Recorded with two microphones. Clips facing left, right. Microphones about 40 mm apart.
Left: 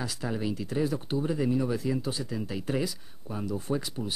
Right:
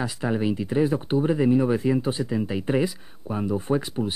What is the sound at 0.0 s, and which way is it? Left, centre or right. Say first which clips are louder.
Speech: right 7 dB; right.